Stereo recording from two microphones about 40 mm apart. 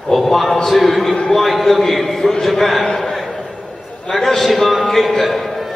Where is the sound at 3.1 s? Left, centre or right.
Centre.